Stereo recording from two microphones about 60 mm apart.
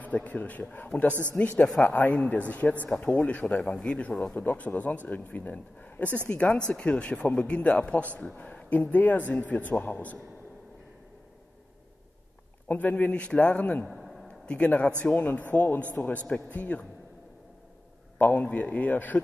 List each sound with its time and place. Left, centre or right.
0.0 s a man's voice: left
4.4 s a man's voice: left
12.6 s a man's voice: left
13.8 s a sound: centre
14.2 s a sound: centre
15.1 s a man's voice: left
18.1 s a man's voice: left